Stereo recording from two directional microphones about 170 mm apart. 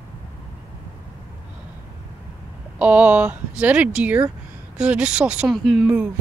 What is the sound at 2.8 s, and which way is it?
Speech, 10° right (ahead or behind).